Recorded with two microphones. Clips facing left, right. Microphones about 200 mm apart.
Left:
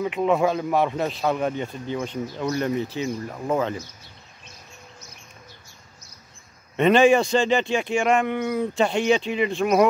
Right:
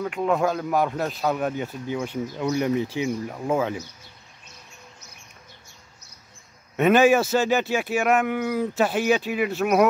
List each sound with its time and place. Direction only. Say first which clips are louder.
0.0 s speech: left 2 dB; 5° left (ahead or behind)
6.8 s speech: left 1 dB; 5° right (ahead or behind)